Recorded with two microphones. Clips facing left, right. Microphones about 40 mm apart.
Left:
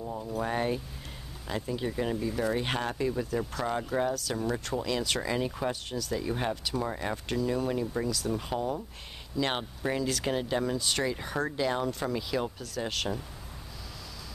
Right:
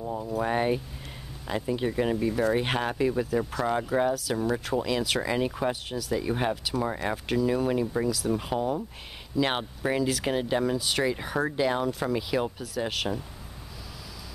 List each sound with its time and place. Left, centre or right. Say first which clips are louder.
0.0 s speech: right 4 dB; centre
3.3 s speech: right 4 dB; centre
6.2 s speech: right 4 dB; centre
6.5 s speech: right 3 dB; centre